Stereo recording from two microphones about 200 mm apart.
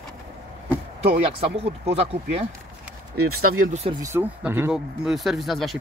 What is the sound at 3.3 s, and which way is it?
Speech, 45° right (ahead or behind).